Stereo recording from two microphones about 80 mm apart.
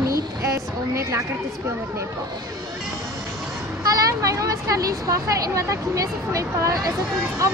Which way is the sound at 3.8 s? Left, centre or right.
Right.